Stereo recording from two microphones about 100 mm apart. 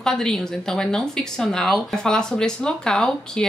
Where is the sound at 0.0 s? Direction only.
5° left (ahead or behind).